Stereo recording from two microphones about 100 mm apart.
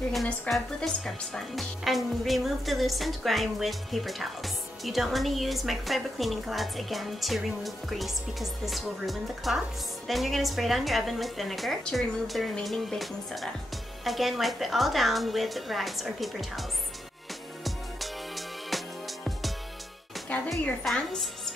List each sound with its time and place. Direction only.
0.1 s speech: centre (ahead or behind)
17.6 s music: centre (ahead or behind)
20.3 s a sound: 15° left (ahead or behind)
20.8 s speech: 5° left (ahead or behind)